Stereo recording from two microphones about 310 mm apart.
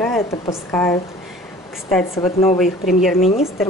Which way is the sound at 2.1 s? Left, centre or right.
Centre.